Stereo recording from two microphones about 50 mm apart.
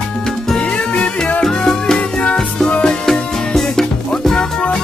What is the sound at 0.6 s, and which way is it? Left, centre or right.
Music, centre.